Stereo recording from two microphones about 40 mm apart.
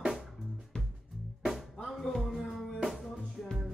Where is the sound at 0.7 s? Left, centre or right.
Left.